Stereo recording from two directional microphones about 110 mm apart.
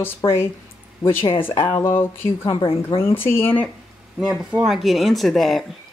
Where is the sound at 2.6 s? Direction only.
55° left (ahead or behind).